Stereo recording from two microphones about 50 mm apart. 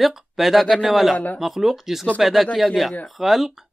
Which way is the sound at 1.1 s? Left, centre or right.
Left.